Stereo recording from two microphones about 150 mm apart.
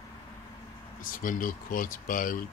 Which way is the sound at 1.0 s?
65° left (ahead or behind).